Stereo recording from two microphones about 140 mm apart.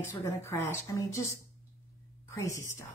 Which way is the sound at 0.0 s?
20° left (ahead or behind).